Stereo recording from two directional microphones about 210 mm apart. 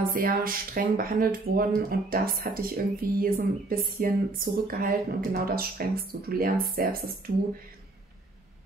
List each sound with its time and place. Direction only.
0.1 s speech: 45° right (ahead or behind)